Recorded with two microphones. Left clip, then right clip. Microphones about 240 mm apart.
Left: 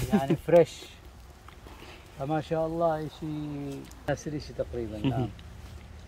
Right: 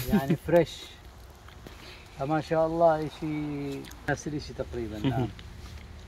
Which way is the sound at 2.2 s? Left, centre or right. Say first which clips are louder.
Right 3 dB; centre.